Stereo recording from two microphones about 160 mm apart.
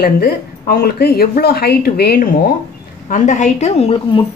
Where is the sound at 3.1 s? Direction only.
50° left (ahead or behind).